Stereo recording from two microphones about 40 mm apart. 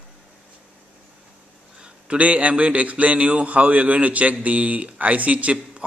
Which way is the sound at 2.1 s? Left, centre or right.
Right.